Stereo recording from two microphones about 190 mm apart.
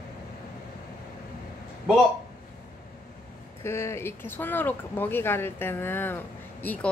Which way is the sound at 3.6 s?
15° left (ahead or behind).